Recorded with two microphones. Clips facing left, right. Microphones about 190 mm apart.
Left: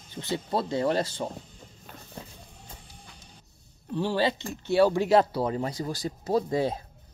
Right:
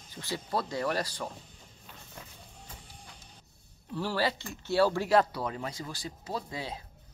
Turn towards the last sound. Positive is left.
turn(degrees=45)  # may be behind; listen again after turning